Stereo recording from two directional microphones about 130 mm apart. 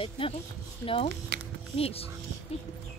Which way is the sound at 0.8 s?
45° left (ahead or behind).